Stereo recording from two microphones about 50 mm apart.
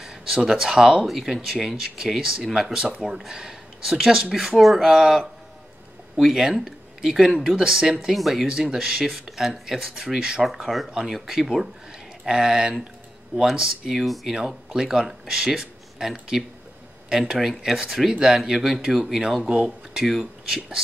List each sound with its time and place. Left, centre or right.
0.0 s a sound: centre
0.5 s speech: centre
8.1 s speech: centre
19.4 s speech: right
20.0 s speech: centre